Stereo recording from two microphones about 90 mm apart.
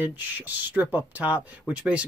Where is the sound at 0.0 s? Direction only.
20° right (ahead or behind).